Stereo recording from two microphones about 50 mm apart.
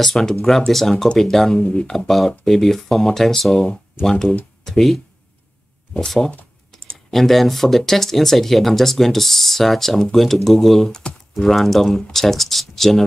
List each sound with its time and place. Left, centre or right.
0.0 s speech: centre
1.6 s speech: left
1.9 s speech: centre